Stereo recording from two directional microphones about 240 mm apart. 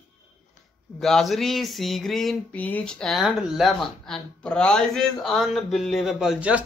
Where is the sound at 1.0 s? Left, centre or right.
Centre.